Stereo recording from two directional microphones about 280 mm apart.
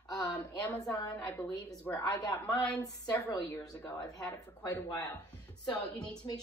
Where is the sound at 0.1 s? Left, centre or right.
Centre.